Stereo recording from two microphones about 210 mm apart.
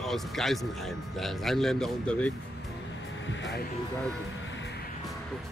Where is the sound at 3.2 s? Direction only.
60° left (ahead or behind).